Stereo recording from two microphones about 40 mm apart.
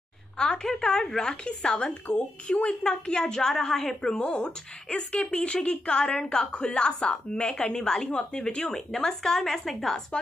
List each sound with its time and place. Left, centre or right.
0.4 s a woman's voice: left
4.2 s a woman's voice: left
8.7 s a woman's voice: centre